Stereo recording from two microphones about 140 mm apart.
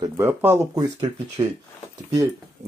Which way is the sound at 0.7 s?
25° right (ahead or behind).